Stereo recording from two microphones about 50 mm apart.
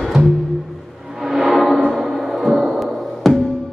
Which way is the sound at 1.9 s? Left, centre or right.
Centre.